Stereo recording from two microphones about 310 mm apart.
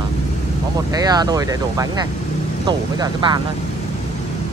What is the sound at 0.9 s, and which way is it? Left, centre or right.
Speech, centre.